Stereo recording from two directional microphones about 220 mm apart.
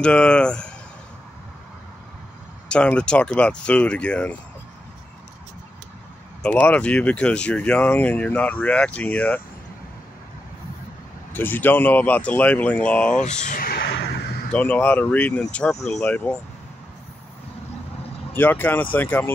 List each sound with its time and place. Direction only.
0.0 s speech: 5° left (ahead or behind)
2.7 s speech: 5° left (ahead or behind)
6.4 s speech: 5° left (ahead or behind)
11.3 s speech: 10° left (ahead or behind)
13.2 s a sound: 35° left (ahead or behind)
14.5 s speech: 5° left (ahead or behind)
18.3 s speech: 10° left (ahead or behind)